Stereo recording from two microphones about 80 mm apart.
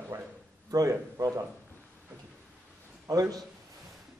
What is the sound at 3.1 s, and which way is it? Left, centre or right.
Speech, right.